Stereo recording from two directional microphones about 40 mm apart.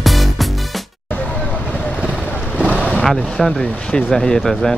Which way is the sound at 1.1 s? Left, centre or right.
Left.